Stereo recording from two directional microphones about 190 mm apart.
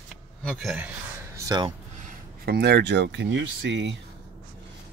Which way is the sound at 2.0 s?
55° right (ahead or behind).